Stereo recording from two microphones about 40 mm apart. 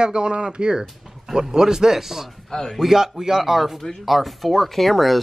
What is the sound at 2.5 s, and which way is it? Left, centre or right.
Speech, centre.